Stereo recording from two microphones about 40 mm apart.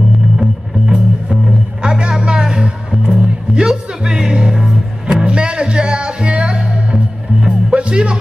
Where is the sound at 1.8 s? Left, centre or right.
Centre.